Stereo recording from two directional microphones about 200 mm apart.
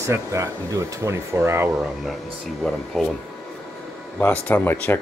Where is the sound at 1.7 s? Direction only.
Centre (ahead or behind).